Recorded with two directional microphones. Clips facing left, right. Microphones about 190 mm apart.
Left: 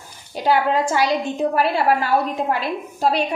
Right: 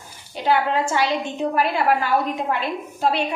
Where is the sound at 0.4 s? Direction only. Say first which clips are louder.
Left 2 dB; 40° left (ahead or behind).